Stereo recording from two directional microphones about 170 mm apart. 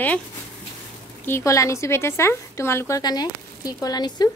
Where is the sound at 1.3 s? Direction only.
15° left (ahead or behind).